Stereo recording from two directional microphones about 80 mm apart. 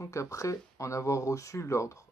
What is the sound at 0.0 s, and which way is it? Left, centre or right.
Speech, left.